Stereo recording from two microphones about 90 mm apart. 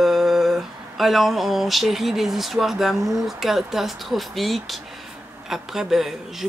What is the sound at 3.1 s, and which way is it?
Speech, 5° right (ahead or behind).